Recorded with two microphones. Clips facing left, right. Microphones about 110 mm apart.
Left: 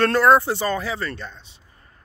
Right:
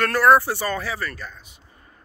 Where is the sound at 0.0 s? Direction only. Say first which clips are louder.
Left 1 dB; 20° left (ahead or behind).